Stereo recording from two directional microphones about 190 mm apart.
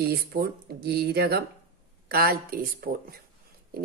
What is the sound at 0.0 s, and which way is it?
Speech, 55° right (ahead or behind).